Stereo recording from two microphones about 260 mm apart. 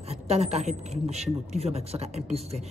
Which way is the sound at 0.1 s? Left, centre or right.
Right.